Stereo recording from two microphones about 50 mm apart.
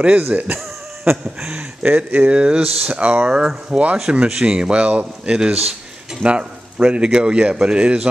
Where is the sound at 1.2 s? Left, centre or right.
Centre.